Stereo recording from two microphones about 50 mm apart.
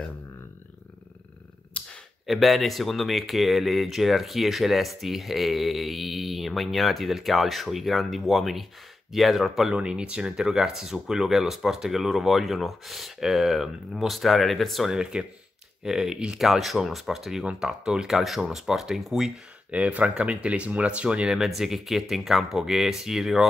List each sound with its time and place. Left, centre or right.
2.2 s speech: centre
9.7 s speech: right; by 15.0 s centre
15.0 s speech: centre
16.3 s speech: centre
19.7 s speech: right
21.3 s speech: centre